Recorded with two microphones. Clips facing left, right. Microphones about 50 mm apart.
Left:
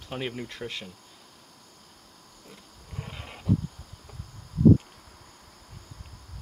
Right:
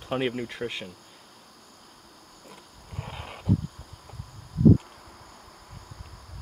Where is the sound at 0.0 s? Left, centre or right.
Right.